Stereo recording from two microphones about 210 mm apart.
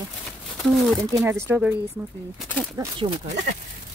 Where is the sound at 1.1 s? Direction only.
10° right (ahead or behind).